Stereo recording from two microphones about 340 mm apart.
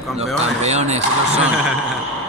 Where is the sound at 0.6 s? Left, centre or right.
Centre.